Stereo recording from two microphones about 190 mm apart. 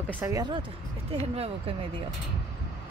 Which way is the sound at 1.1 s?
30° right (ahead or behind).